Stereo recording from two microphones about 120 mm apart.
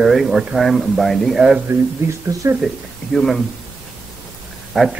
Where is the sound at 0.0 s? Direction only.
5° right (ahead or behind).